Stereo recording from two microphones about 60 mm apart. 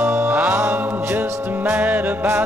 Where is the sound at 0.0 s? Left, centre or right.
Right.